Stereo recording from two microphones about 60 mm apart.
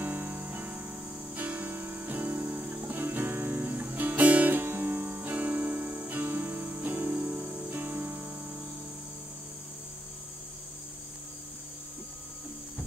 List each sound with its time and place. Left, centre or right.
0.0 s music: right